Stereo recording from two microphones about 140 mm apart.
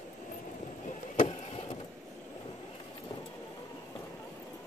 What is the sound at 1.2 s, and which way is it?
Vehicle, 40° left (ahead or behind).